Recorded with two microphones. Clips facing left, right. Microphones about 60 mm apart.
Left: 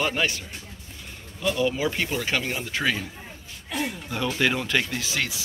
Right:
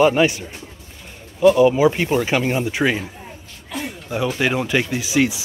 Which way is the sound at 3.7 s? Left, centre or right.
Centre.